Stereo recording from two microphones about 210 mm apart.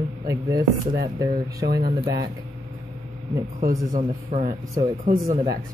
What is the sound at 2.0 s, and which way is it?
Speech, 15° right (ahead or behind).